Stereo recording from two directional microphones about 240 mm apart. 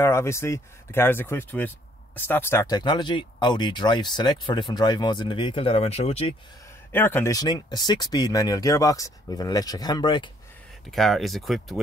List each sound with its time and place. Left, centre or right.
0.0 s speech: centre
6.9 s speech: centre
10.9 s speech: centre